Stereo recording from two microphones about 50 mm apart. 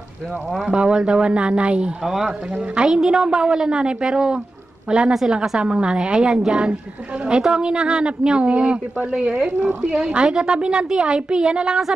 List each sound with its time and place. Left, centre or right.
0.7 s speech: centre
2.0 s a woman's voice: centre